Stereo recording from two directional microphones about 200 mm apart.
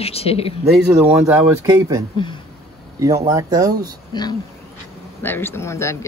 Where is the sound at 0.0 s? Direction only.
30° left (ahead or behind).